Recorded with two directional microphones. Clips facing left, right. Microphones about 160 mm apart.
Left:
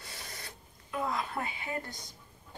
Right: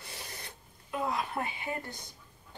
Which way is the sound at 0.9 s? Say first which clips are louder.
Right 1 dB; 20° right (ahead or behind).